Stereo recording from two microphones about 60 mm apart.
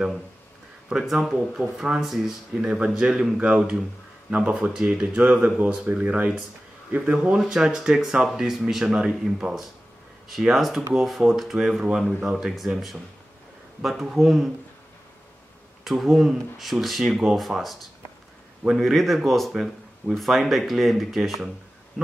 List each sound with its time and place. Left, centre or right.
0.8 s speech: centre
4.4 s speech: centre
7.3 s speech: centre
15.8 s speech: centre